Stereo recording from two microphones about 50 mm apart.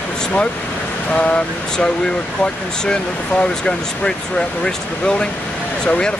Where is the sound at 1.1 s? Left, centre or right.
Left.